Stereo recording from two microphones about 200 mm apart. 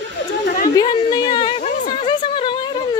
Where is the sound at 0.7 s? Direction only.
20° left (ahead or behind).